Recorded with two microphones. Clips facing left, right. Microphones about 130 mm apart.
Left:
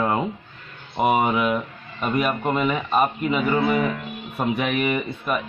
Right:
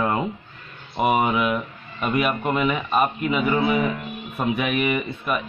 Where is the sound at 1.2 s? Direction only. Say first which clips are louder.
Left 1 dB; 25° left (ahead or behind).